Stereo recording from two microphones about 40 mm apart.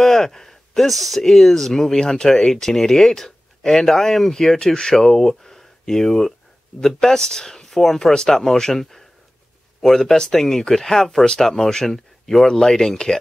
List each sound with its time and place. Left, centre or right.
0.0 s a sound: centre
1.2 s speech: centre
9.8 s speech: centre